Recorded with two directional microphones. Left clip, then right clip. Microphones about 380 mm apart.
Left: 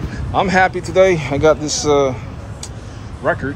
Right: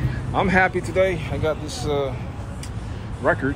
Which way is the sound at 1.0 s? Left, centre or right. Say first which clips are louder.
Left 10 dB; centre.